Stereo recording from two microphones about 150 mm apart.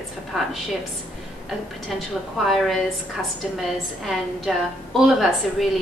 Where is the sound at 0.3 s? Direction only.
Centre (ahead or behind).